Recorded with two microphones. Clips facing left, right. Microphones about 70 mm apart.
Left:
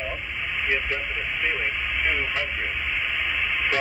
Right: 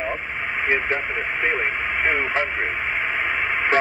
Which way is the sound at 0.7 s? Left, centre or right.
Right.